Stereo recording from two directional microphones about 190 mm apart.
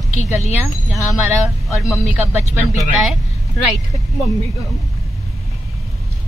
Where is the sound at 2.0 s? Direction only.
35° left (ahead or behind).